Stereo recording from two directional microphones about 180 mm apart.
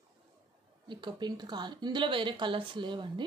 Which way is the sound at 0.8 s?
25° right (ahead or behind).